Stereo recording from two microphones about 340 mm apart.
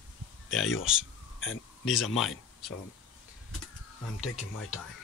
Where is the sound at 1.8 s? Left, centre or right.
Centre.